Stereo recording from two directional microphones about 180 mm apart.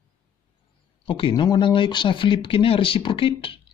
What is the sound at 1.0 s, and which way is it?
Speech, 25° left (ahead or behind).